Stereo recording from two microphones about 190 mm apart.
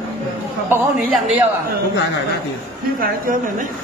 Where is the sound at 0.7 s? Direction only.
10° right (ahead or behind).